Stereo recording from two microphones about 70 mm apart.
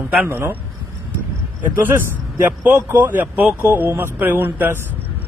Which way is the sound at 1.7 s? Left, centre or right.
Right.